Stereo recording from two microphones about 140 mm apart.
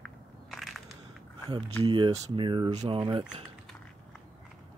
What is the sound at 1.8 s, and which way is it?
Speech, 35° right (ahead or behind).